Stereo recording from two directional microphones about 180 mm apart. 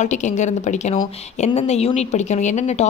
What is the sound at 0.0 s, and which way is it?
A woman's voice, 40° left (ahead or behind).